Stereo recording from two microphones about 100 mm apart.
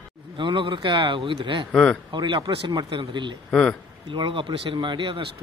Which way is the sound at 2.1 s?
50° right (ahead or behind).